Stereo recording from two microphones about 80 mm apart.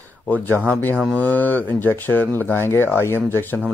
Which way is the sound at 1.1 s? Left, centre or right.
Left.